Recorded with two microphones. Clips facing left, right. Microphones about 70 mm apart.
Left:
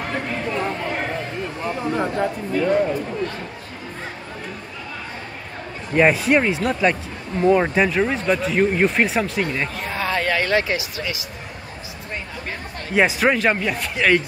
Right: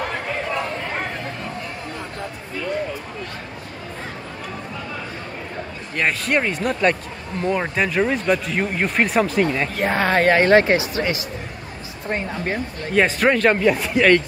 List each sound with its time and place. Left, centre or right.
5.9 s speech: centre
9.8 s speech: right
12.9 s speech: centre